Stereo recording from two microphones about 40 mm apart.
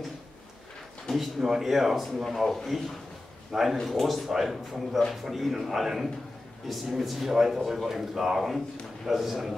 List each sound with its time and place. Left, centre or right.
1.1 s speech: centre
3.5 s speech: centre